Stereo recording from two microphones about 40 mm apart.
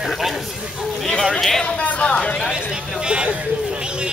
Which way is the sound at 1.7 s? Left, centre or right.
Left.